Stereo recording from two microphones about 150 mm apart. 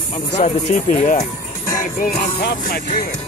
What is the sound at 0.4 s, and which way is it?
Speech, 50° left (ahead or behind).